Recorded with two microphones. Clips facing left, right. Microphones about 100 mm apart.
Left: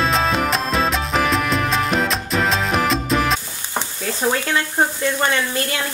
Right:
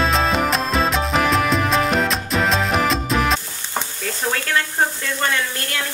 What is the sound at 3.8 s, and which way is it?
Stir, 15° left (ahead or behind).